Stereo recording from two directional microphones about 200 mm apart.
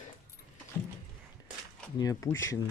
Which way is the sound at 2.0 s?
15° left (ahead or behind).